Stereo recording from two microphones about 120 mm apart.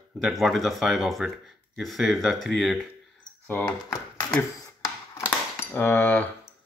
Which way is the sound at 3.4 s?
15° left (ahead or behind).